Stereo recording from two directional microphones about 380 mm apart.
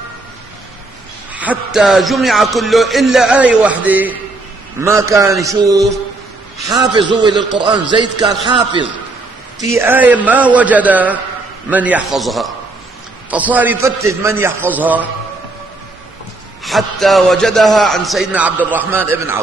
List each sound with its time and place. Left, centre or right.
1.3 s a man's voice: centre
6.9 s a man's voice: centre
16.6 s speech: centre